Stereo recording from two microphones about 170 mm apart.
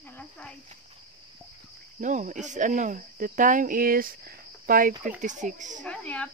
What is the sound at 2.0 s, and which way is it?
Speech, 45° right (ahead or behind).